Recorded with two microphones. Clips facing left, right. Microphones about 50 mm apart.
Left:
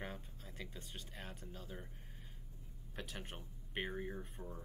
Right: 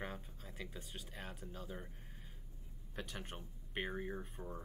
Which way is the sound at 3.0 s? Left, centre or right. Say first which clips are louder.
Right 1 dB; centre.